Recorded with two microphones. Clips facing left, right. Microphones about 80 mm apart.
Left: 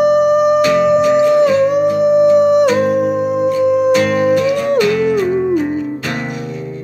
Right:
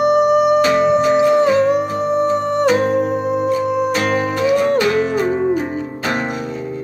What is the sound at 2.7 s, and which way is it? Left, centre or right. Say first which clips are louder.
Music: left 2 dB; right.